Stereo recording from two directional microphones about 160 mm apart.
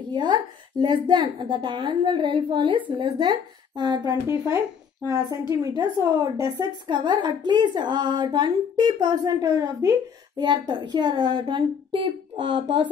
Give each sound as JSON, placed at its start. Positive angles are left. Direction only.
{"t": 0.1, "sound": "a woman's voice", "side_deg": -30}
{"t": 5.5, "sound": "a woman's voice", "side_deg": -15}
{"t": 6.6, "sound": "a woman's voice", "side_deg": -25}